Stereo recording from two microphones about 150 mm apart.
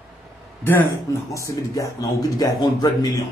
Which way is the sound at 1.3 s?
20° left (ahead or behind).